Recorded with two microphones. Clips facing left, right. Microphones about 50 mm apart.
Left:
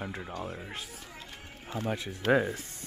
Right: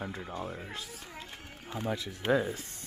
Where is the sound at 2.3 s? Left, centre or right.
Left.